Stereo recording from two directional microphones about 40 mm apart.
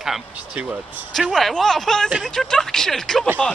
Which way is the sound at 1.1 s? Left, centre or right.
Centre.